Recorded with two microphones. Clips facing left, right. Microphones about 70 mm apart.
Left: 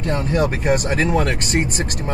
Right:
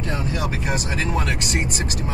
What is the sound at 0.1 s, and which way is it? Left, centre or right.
Speech, left.